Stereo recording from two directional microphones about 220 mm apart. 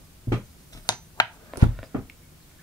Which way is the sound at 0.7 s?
15° left (ahead or behind).